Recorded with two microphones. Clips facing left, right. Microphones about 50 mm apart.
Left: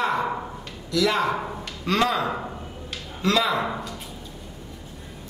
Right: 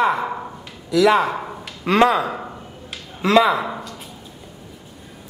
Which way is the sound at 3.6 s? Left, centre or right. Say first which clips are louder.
Right 1 dB; centre.